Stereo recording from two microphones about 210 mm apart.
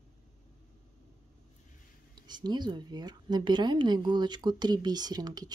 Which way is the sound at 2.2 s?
20° right (ahead or behind).